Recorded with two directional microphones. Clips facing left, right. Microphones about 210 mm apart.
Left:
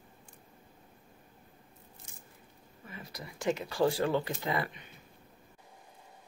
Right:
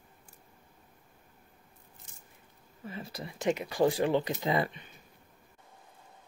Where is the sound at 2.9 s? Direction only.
30° right (ahead or behind).